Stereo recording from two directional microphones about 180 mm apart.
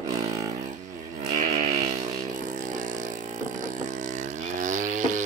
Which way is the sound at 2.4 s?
45° right (ahead or behind).